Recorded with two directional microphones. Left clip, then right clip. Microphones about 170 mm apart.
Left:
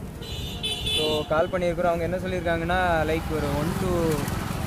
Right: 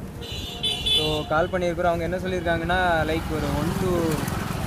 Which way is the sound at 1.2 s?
15° left (ahead or behind).